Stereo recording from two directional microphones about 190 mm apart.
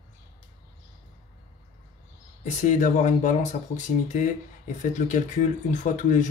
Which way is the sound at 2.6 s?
40° left (ahead or behind).